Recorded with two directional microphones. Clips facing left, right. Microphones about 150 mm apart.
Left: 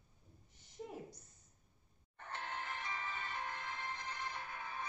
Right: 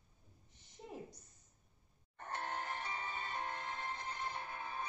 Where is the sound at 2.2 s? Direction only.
45° right (ahead or behind).